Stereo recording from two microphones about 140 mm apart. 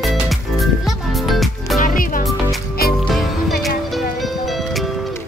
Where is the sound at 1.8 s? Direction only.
75° left (ahead or behind).